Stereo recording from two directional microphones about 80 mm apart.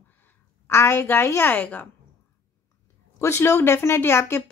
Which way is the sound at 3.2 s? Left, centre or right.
Left.